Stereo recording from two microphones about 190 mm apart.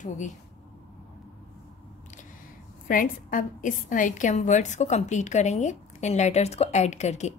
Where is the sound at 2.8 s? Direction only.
45° left (ahead or behind).